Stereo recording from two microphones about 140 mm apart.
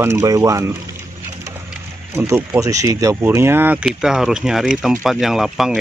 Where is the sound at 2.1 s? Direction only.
20° right (ahead or behind).